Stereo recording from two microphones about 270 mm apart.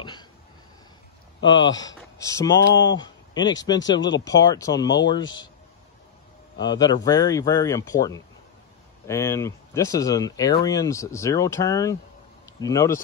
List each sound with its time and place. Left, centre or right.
0.0 s hiccup: centre
1.4 s speech: centre
1.7 s a man's voice: left
2.1 s speech: centre
5.2 s a man's voice: left
6.6 s speech: centre